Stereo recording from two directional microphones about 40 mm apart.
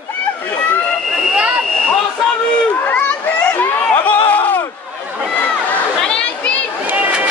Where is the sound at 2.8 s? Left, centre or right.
Left.